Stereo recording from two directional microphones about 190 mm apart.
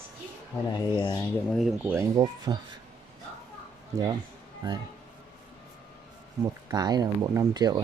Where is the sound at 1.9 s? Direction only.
20° right (ahead or behind).